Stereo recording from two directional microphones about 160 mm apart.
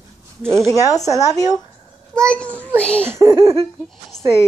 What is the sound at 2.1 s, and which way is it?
Speech, 5° left (ahead or behind).